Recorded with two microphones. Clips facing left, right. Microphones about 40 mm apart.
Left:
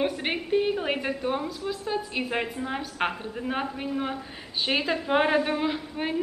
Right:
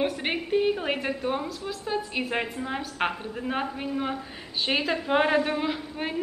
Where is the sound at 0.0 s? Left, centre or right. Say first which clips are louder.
Even; centre.